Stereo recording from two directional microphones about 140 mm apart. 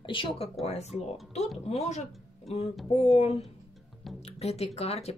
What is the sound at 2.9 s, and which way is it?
Speech, 45° left (ahead or behind).